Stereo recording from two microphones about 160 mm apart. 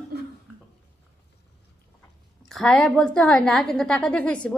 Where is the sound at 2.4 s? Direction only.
5° left (ahead or behind).